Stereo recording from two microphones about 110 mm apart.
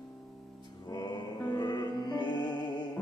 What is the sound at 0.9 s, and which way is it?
Music, 40° left (ahead or behind).